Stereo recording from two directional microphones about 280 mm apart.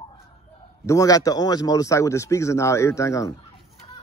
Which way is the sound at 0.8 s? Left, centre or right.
Centre.